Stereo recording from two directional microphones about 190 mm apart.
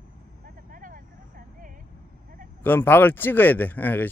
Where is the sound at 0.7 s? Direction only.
45° right (ahead or behind).